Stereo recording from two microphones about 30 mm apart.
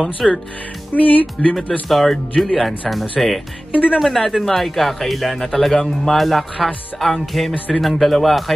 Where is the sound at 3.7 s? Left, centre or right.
Right.